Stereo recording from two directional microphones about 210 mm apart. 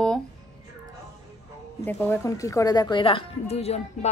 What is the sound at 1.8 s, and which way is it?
A woman's voice, 10° left (ahead or behind).